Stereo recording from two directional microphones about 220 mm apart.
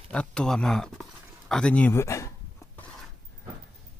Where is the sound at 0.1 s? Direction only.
5° left (ahead or behind).